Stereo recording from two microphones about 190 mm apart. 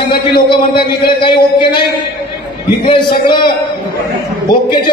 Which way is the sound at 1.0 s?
25° left (ahead or behind).